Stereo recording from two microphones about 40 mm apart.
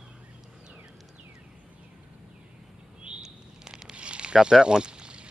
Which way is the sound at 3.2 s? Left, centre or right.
Centre.